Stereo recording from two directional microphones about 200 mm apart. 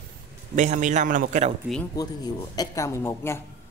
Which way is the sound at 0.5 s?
40° right (ahead or behind).